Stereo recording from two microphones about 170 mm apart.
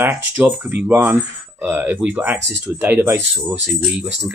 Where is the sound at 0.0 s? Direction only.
10° right (ahead or behind).